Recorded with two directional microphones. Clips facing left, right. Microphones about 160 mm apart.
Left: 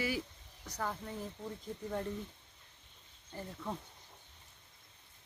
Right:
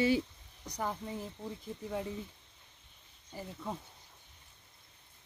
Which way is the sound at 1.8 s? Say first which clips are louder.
Even; 5° right (ahead or behind).